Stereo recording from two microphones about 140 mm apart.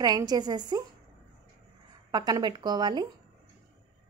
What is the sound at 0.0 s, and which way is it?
Speech, 30° right (ahead or behind).